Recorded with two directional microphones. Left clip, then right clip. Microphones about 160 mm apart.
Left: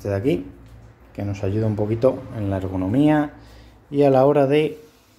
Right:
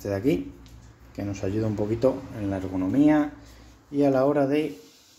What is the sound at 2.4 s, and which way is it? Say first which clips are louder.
Speech: left 3 dB; 15° left (ahead or behind).